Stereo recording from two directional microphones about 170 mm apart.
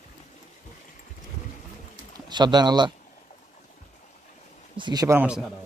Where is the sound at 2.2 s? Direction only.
25° right (ahead or behind).